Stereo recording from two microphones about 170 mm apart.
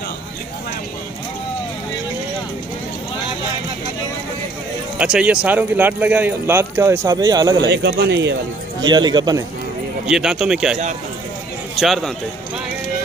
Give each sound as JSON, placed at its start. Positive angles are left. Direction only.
{"t": 4.9, "sound": "speech", "side_deg": -5}
{"t": 7.6, "sound": "speech", "side_deg": -85}
{"t": 8.8, "sound": "a man's voice", "side_deg": -25}
{"t": 10.0, "sound": "speech", "side_deg": -5}